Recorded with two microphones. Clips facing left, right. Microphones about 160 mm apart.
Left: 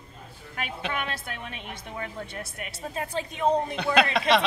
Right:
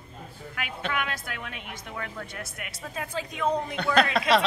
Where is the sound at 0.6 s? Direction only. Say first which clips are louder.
Even; 30° left (ahead or behind).